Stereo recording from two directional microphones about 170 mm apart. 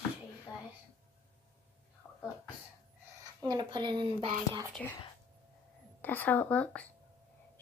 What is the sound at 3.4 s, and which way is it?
Speech, 25° right (ahead or behind).